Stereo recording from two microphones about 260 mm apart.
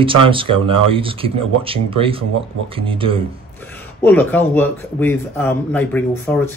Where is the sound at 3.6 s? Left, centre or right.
Centre.